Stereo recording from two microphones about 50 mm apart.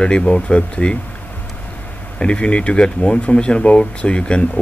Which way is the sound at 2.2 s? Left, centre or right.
Left.